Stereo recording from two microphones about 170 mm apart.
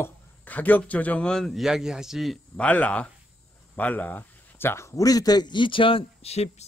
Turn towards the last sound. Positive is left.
turn(degrees=40)  # may be behind; listen again after turning